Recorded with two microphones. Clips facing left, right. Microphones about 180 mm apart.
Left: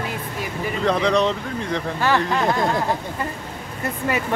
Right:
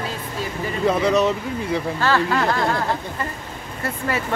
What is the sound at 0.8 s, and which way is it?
Speech, 5° right (ahead or behind).